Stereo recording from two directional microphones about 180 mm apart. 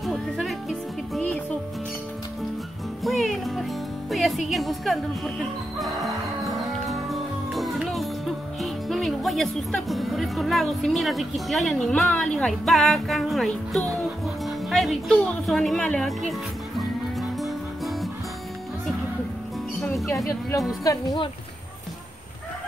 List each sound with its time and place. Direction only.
0.0 s music: centre (ahead or behind)
3.0 s music: centre (ahead or behind)
8.5 s speech: centre (ahead or behind)
20.8 s speech: 20° left (ahead or behind)